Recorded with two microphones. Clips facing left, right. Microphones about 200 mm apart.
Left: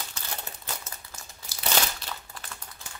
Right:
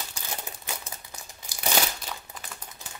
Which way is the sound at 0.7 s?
15° right (ahead or behind).